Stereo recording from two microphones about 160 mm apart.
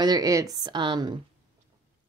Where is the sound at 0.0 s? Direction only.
25° right (ahead or behind).